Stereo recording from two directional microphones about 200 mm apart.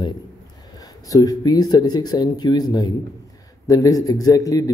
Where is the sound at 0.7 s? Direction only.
20° left (ahead or behind).